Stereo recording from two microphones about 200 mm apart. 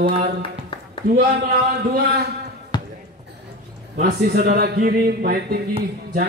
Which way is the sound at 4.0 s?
50° right (ahead or behind).